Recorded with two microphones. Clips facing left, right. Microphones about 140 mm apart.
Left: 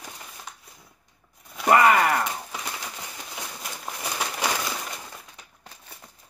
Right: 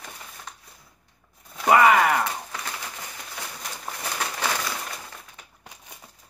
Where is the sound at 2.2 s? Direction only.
15° left (ahead or behind).